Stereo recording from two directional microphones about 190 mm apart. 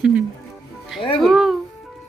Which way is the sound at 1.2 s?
Centre (ahead or behind).